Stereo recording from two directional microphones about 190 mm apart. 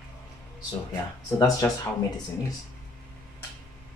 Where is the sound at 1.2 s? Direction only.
20° left (ahead or behind).